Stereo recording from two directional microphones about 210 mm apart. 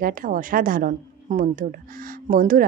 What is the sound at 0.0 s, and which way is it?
A woman's voice, 40° right (ahead or behind).